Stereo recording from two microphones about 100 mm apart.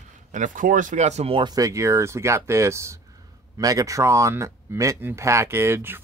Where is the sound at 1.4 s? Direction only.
35° right (ahead or behind).